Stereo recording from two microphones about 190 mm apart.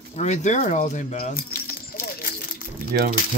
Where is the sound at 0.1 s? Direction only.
35° left (ahead or behind).